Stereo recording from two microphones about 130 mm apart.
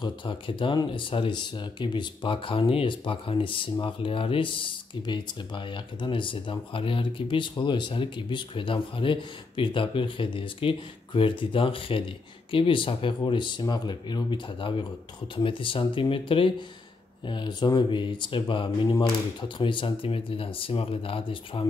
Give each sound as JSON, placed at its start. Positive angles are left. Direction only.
{"t": 0.0, "sound": "speech", "side_deg": 40}